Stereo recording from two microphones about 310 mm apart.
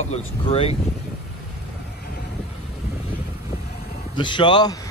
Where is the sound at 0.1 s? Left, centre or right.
Centre.